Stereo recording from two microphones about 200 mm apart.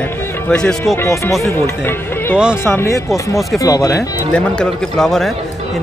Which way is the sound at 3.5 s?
15° left (ahead or behind).